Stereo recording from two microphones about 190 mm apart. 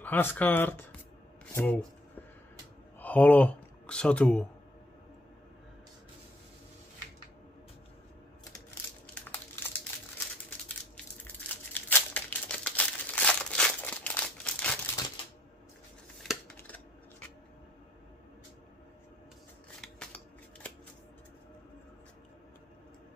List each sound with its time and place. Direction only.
0.0 s speech: 10° left (ahead or behind)
3.0 s speech: 10° left (ahead or behind)
8.6 s crushing: 10° left (ahead or behind)
11.7 s crumpling: 10° left (ahead or behind)
15.0 s a sound: 20° left (ahead or behind)
16.2 s scissors: 5° left (ahead or behind)
19.8 s scissors: 5° left (ahead or behind)